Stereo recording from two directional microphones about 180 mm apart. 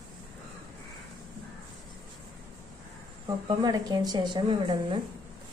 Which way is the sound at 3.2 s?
20° right (ahead or behind).